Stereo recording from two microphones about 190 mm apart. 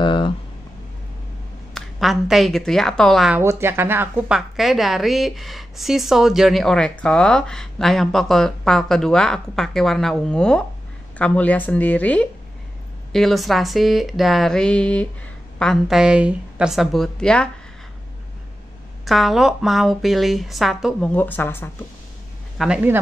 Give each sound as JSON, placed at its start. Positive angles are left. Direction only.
{"t": 0.0, "sound": "a sound", "side_deg": 25}
{"t": 1.7, "sound": "a woman's voice", "side_deg": 0}
{"t": 3.3, "sound": "a woman's voice", "side_deg": -10}
{"t": 19.0, "sound": "a woman's voice", "side_deg": 0}
{"t": 22.6, "sound": "a woman's voice", "side_deg": -5}